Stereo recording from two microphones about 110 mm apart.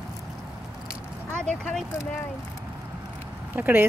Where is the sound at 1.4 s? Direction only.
5° left (ahead or behind).